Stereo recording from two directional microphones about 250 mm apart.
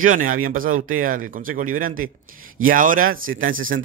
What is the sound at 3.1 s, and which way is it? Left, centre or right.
Speech, right.